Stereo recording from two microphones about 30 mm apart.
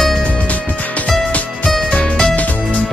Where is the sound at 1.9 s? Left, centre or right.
Left.